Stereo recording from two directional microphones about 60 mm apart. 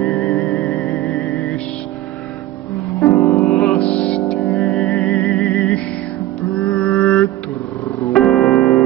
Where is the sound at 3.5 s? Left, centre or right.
Centre.